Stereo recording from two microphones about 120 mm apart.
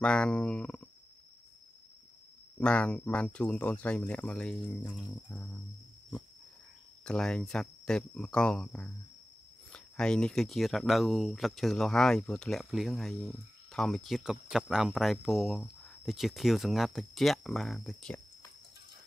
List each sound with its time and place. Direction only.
0.0 s speech: 10° left (ahead or behind)
2.6 s speech: 10° left (ahead or behind)
7.1 s speech: 5° left (ahead or behind)